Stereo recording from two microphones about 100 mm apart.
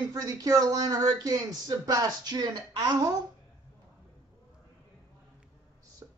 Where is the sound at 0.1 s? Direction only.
35° right (ahead or behind).